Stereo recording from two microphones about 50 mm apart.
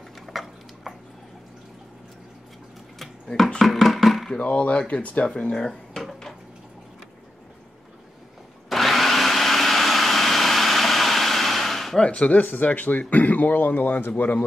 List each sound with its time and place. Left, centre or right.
0.3 s tick-tock: centre
3.5 s a sound: centre
4.3 s speech: left
5.2 s speech: centre
8.6 s vacuum cleaner: centre
12.0 s speech: left
12.4 s speech: left